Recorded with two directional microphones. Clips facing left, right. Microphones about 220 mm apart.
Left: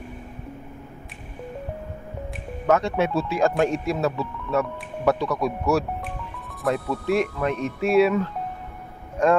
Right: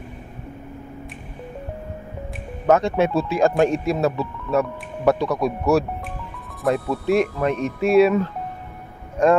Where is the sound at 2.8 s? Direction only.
20° right (ahead or behind).